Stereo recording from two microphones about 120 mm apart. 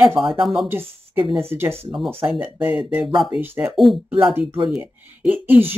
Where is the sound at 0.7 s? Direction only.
15° right (ahead or behind).